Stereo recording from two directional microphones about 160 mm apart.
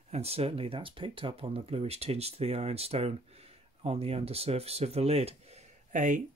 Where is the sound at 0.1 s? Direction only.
40° right (ahead or behind).